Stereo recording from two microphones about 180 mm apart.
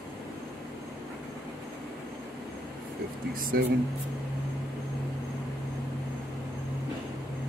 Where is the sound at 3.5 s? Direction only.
55° right (ahead or behind).